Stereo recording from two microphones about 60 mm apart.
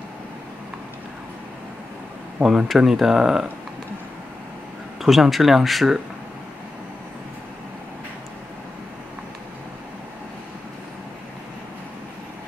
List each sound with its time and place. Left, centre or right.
2.4 s speech: right
2.8 s speech: centre
5.0 s speech: centre